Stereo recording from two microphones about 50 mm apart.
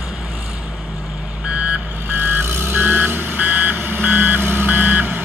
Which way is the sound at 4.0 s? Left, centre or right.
Right.